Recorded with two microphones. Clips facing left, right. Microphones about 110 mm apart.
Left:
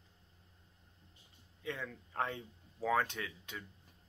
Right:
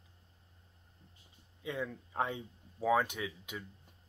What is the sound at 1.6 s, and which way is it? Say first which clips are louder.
Speech: right 4 dB; 15° right (ahead or behind).